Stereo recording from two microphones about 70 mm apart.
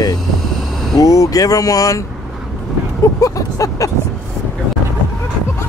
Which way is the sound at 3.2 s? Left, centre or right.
Left.